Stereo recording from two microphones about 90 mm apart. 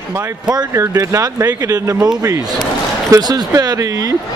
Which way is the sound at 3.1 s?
45° right (ahead or behind).